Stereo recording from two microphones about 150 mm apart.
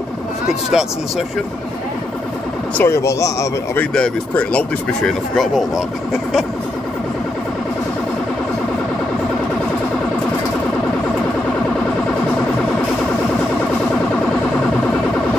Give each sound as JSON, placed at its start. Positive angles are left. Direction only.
{"t": 0.5, "sound": "speech", "side_deg": -5}
{"t": 2.8, "sound": "speech", "side_deg": 20}
{"t": 3.9, "sound": "speech", "side_deg": 5}